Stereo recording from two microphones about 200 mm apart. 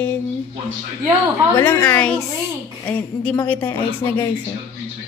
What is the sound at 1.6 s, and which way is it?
A woman's voice, 5° left (ahead or behind).